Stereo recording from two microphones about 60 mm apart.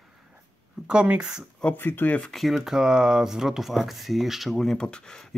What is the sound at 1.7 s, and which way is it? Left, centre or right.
Speech, left.